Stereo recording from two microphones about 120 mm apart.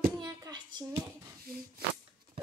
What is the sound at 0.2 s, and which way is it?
Child singing, 35° right (ahead or behind).